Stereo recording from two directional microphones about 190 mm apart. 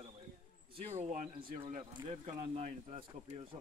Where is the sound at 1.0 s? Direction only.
40° right (ahead or behind).